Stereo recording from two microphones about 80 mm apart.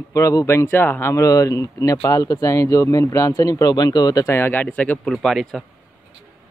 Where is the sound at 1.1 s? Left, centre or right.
Left.